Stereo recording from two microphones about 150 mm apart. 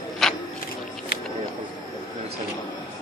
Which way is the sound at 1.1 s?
75° left (ahead or behind).